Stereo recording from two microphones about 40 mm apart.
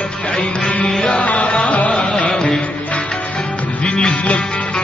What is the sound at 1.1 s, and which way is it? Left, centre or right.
Music, left.